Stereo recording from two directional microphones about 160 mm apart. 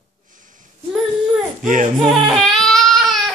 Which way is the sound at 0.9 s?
5° right (ahead or behind).